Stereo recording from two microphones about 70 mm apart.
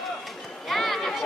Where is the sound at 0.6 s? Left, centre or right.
Centre.